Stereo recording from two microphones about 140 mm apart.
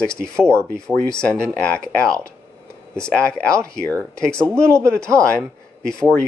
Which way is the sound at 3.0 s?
5° left (ahead or behind).